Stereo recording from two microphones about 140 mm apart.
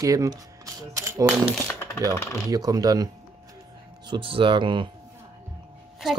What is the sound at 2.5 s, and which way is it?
Speech, 25° right (ahead or behind).